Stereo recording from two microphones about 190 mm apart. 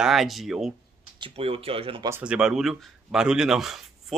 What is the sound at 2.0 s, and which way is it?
Speech, 10° right (ahead or behind).